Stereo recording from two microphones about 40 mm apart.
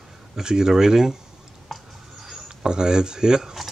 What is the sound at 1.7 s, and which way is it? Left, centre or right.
Writing, centre.